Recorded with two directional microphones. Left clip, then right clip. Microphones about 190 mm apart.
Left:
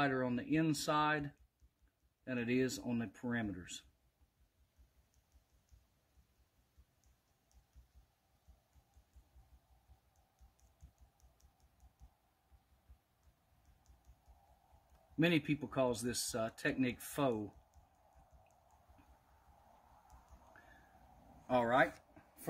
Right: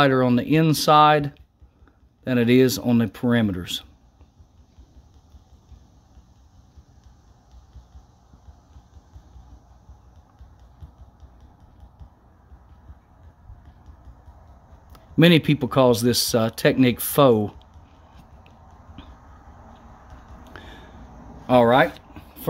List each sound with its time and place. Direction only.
0.0 s speech: 35° right (ahead or behind)
15.1 s speech: 40° right (ahead or behind)
21.5 s speech: 45° right (ahead or behind)